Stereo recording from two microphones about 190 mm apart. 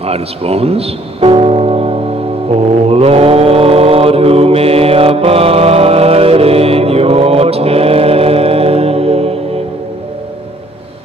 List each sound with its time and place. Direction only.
0.0 s speech: 30° right (ahead or behind)
2.5 s mantra: 30° right (ahead or behind)